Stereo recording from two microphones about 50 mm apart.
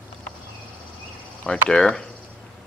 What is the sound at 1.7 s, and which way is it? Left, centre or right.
Speech, centre.